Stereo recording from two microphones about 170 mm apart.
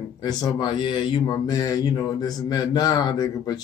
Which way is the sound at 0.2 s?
25° left (ahead or behind).